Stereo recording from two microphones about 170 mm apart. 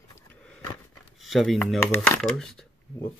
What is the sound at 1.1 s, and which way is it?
Speech, centre (ahead or behind).